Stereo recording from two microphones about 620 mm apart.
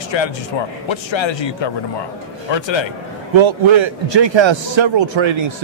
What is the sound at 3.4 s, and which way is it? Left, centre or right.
A man's voice, right.